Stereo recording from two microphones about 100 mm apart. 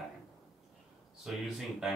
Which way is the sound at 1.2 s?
Centre (ahead or behind).